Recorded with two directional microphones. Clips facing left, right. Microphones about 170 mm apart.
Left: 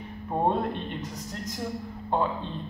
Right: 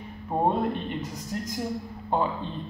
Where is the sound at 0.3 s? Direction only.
5° right (ahead or behind).